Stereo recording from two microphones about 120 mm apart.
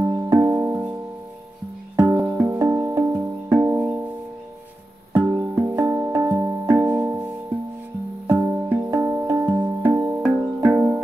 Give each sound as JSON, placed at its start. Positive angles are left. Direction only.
{"t": 0.0, "sound": "music", "side_deg": -25}
{"t": 2.0, "sound": "music", "side_deg": -20}
{"t": 5.1, "sound": "music", "side_deg": -20}
{"t": 8.3, "sound": "music", "side_deg": -20}